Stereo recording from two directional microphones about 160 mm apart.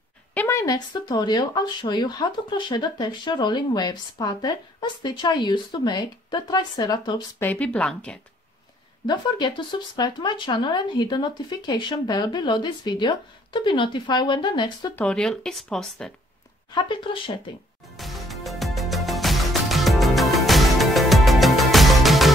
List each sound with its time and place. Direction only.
0.3 s speech: 15° left (ahead or behind)
7.3 s a woman's voice: 10° left (ahead or behind)
9.0 s speech: 30° left (ahead or behind)
15.0 s speech: 5° left (ahead or behind)
16.7 s speech: 30° left (ahead or behind)
17.9 s music: centre (ahead or behind)